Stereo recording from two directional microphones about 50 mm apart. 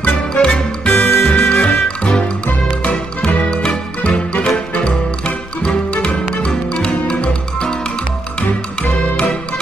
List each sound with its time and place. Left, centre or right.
0.0 s music: left
0.8 s music: left